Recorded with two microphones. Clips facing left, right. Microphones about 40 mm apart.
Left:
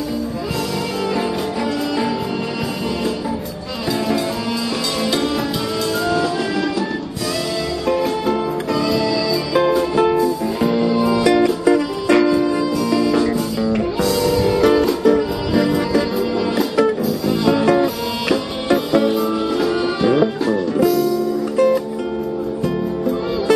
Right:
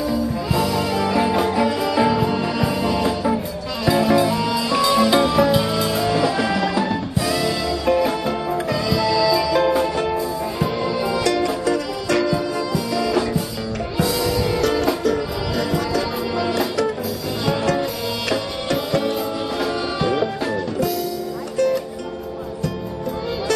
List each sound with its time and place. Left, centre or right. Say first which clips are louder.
1.1 s music: right 3 dB; centre
7.8 s music: even; centre
11.2 s music: left 6 dB; centre
13.9 s music: even; centre
14.6 s music: left 5 dB; centre
17.3 s music: left 6 dB; centre
18.9 s music: left 5 dB; centre